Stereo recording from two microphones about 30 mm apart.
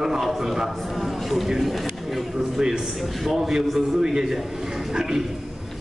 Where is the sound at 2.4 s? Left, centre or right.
Centre.